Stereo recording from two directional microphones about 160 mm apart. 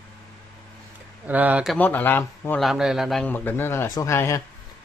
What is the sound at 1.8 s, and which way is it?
Speech, 10° left (ahead or behind).